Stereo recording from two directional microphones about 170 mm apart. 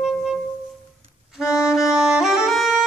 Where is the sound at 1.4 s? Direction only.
20° left (ahead or behind).